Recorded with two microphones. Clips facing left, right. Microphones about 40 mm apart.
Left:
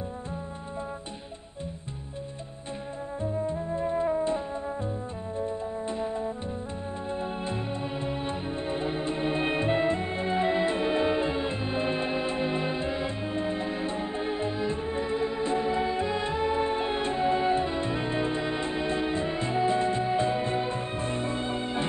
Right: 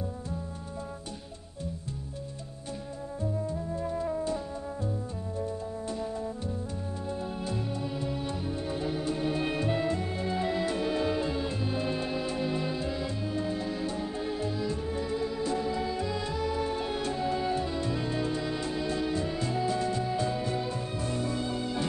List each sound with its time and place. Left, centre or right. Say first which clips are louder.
3.2 s music: left 3 dB; left
5.4 s music: left 4 dB; left